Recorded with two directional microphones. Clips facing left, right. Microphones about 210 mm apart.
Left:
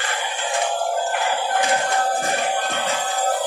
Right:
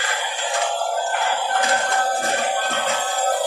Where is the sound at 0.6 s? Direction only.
15° left (ahead or behind).